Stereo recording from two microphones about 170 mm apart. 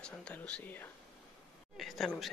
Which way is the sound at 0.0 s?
5° left (ahead or behind).